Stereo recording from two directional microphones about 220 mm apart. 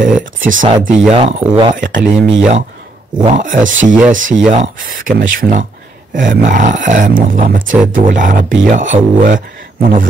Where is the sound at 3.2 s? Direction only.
30° right (ahead or behind).